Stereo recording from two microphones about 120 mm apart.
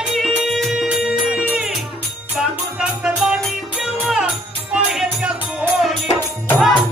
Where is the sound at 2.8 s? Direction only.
5° right (ahead or behind).